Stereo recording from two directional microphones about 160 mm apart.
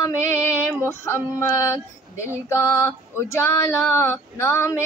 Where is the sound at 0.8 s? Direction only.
15° left (ahead or behind).